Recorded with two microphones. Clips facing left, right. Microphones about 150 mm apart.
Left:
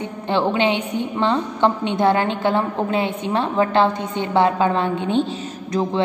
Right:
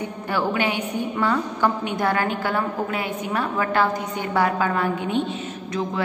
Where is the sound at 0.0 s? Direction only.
25° left (ahead or behind).